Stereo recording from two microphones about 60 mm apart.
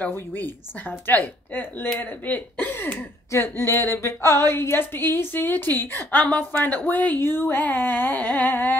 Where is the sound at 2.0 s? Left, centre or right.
Left.